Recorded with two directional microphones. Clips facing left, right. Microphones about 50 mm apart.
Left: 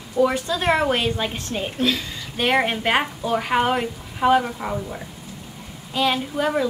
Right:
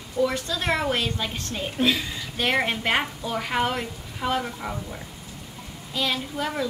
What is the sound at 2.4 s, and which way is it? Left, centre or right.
A woman's voice, centre.